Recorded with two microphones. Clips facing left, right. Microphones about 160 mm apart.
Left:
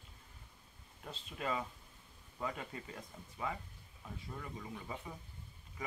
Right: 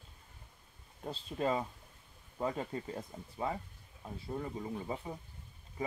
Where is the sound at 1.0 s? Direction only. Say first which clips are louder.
Right 7 dB; 35° right (ahead or behind).